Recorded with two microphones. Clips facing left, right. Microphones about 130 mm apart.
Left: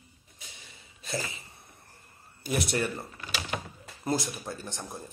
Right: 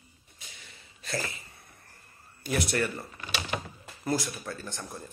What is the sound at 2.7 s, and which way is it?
Speech, 15° left (ahead or behind).